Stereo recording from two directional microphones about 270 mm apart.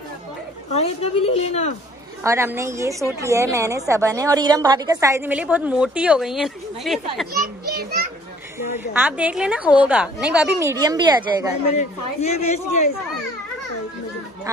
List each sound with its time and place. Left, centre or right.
0.7 s a woman's voice: left
2.2 s a woman's voice: centre
7.6 s children playing: right
8.7 s a woman's voice: centre
11.7 s a woman's voice: left